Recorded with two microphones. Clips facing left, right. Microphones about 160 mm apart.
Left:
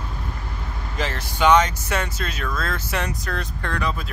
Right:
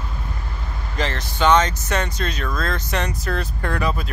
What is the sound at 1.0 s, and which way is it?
Speech, 5° left (ahead or behind).